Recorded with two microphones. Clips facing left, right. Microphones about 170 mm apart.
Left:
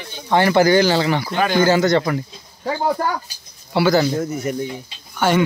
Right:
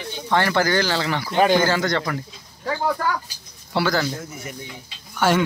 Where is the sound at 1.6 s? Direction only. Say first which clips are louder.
Left 5 dB; 15° left (ahead or behind).